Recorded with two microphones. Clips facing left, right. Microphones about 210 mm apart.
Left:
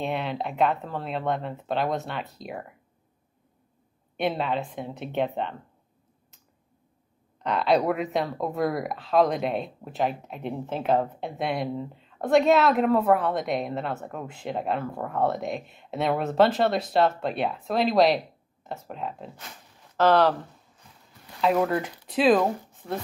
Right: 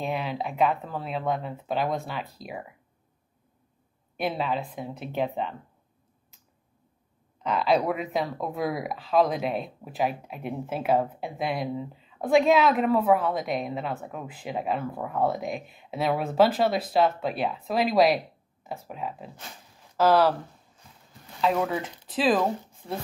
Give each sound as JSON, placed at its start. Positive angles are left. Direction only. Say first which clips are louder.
{"t": 0.0, "sound": "a woman's voice", "louder": "left 1 dB", "side_deg": 0}
{"t": 4.2, "sound": "a woman's voice", "louder": "left 2 dB", "side_deg": 0}
{"t": 7.4, "sound": "a woman's voice", "louder": "left 1 dB", "side_deg": 0}
{"t": 21.4, "sound": "a woman's voice", "louder": "left 2 dB", "side_deg": 0}